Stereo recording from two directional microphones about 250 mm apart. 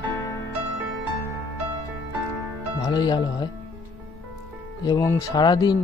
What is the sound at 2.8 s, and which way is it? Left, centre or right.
Speech, centre.